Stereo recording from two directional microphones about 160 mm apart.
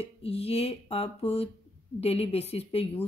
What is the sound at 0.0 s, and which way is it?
Speech, 40° left (ahead or behind).